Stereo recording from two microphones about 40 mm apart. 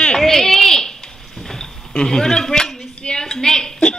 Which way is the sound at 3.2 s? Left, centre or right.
Centre.